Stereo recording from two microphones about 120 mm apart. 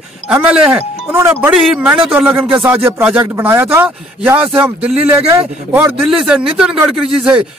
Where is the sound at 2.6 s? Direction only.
20° right (ahead or behind).